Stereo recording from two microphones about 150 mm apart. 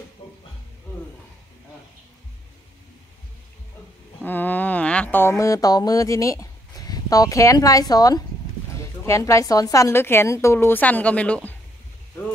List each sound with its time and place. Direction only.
4.2 s a woman's voice: 10° left (ahead or behind)